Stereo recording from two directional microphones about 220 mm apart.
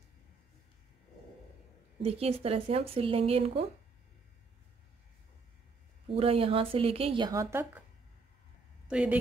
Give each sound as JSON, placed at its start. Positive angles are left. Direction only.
{"t": 2.0, "sound": "speech", "side_deg": -25}
{"t": 6.0, "sound": "speech", "side_deg": -25}
{"t": 8.8, "sound": "a woman's voice", "side_deg": -5}